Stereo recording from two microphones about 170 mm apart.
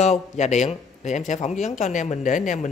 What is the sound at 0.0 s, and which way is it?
Speech, 40° left (ahead or behind).